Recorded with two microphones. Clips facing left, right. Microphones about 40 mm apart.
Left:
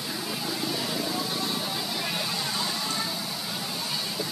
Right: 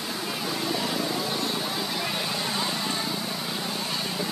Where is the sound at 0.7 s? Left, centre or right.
Centre.